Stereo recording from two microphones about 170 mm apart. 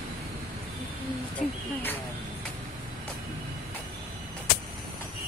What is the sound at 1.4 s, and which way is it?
Speech, 45° left (ahead or behind).